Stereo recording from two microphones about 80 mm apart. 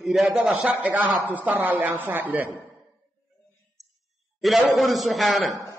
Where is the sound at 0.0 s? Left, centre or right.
Centre.